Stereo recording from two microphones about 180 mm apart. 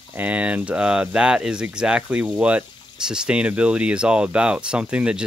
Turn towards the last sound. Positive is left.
turn(degrees=-5)  # may be behind; listen again after turning